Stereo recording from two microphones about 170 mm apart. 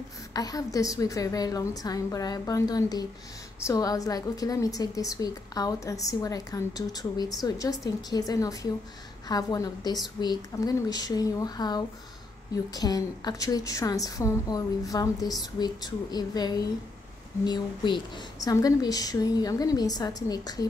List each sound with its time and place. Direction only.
0.3 s a woman's voice: 20° left (ahead or behind)